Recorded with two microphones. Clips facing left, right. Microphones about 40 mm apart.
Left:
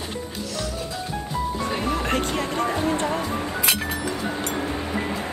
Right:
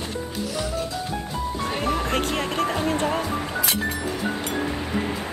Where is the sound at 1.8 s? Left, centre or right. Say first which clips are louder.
Right 1 dB; right.